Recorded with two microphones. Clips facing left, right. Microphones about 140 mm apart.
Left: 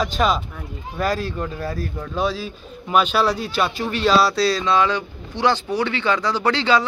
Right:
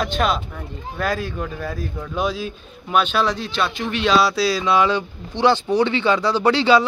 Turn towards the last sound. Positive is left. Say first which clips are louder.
# right 3 dB
turn(degrees=-15)  # may be behind; listen again after turning